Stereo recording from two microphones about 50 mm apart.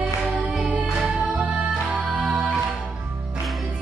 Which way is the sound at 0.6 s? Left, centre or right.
Right.